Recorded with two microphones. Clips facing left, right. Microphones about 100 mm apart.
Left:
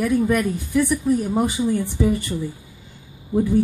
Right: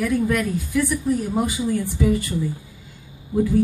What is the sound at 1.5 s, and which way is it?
Speech, 25° left (ahead or behind).